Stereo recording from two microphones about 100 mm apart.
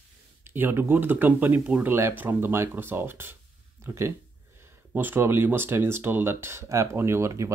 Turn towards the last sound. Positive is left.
turn(degrees=-30)  # may be behind; listen again after turning